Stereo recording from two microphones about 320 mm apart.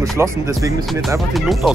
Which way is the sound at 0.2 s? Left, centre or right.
Centre.